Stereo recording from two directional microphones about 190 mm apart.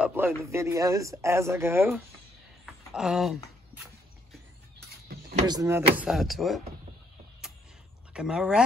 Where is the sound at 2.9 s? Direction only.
Centre (ahead or behind).